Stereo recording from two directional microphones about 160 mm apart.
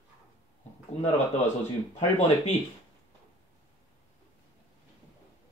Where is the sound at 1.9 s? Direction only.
45° left (ahead or behind).